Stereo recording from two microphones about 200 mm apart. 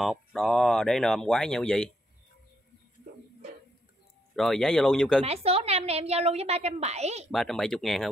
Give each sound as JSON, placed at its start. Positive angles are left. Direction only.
{"t": 0.0, "sound": "speech", "side_deg": 0}
{"t": 4.4, "sound": "speech", "side_deg": 5}
{"t": 5.2, "sound": "a woman's voice", "side_deg": -30}
{"t": 7.2, "sound": "speech", "side_deg": 0}